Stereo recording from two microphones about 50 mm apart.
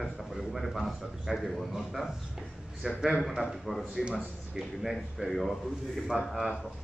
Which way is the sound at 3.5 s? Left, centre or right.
Centre.